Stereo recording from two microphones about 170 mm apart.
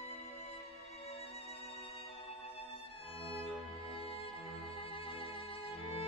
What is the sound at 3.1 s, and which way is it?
Violin, 35° left (ahead or behind).